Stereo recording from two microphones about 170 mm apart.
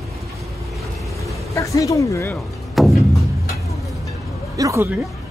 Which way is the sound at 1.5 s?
20° left (ahead or behind).